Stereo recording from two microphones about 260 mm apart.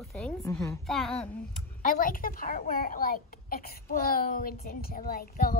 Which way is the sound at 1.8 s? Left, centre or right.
Left.